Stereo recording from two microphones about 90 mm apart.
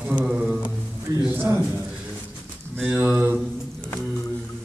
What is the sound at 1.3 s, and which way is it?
Bird, 20° right (ahead or behind).